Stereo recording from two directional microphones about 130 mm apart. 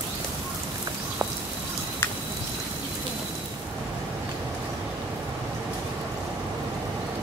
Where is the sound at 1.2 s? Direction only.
30° right (ahead or behind).